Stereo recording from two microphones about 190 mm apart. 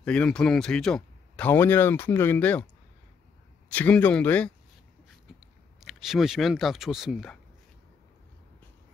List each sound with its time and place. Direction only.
0.0 s speech: 5° left (ahead or behind)
5.8 s speech: centre (ahead or behind)